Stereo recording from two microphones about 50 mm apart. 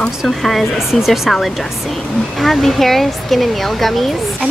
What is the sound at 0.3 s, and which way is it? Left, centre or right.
Speech, centre.